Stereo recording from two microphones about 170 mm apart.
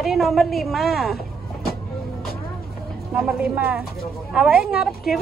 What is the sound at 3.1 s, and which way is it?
A woman's voice, 5° right (ahead or behind).